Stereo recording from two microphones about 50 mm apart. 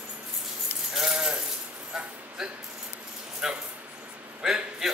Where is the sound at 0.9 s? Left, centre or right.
Centre.